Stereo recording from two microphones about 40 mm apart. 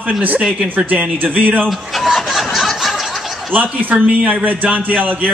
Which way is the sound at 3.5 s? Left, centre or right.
Right.